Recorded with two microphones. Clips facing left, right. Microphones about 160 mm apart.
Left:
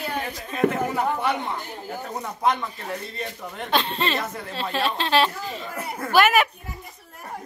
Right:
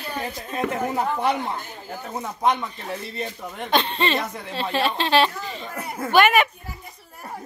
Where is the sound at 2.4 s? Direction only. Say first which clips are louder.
Right 1 dB; 20° right (ahead or behind).